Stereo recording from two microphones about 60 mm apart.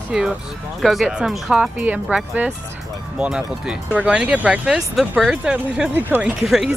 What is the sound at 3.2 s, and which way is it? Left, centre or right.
Speech, centre.